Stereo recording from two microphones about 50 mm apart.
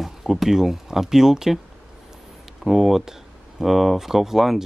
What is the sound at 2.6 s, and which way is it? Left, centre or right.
Speech, centre.